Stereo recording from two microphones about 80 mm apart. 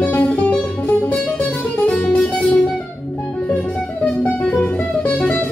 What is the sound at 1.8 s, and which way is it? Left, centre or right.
Music, centre.